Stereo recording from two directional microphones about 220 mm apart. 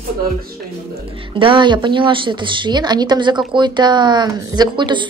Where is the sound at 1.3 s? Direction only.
20° right (ahead or behind).